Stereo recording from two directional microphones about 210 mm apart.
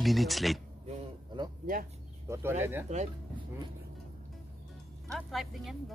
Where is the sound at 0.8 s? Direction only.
20° right (ahead or behind).